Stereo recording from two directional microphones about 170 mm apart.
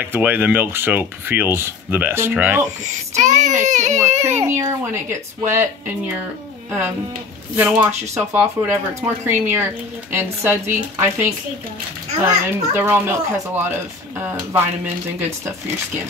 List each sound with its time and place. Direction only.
0.0 s speech: 10° right (ahead or behind)
2.8 s speech: 45° right (ahead or behind)
4.3 s speech: 15° right (ahead or behind)
7.5 s speech: 10° right (ahead or behind)
12.3 s speech: 15° right (ahead or behind)